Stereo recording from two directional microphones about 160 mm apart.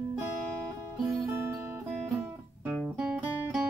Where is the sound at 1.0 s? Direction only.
20° right (ahead or behind).